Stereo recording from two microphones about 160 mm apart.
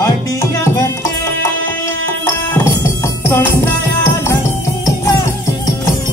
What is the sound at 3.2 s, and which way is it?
Music, 10° left (ahead or behind).